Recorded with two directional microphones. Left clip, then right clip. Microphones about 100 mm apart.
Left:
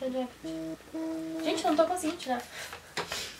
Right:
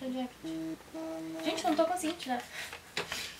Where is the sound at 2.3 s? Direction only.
5° left (ahead or behind).